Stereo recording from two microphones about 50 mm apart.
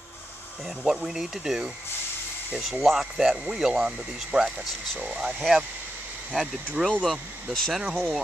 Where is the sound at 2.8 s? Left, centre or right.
Centre; by 5.3 s right.